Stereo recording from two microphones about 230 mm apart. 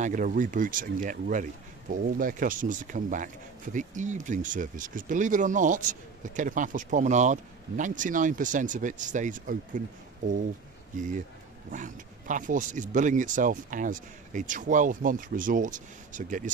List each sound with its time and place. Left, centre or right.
0.0 s speech: right